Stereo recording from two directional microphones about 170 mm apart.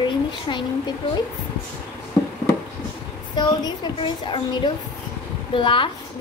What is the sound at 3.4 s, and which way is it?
A woman's voice, 25° left (ahead or behind).